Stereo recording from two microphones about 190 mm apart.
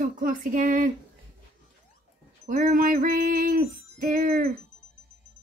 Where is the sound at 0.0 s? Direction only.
45° right (ahead or behind).